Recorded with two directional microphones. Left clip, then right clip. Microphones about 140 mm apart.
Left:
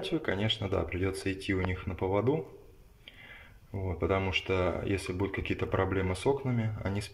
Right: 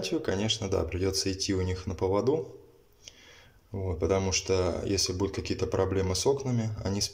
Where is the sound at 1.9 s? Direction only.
30° right (ahead or behind).